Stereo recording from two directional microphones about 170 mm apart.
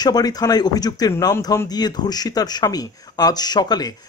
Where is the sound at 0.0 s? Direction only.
25° left (ahead or behind).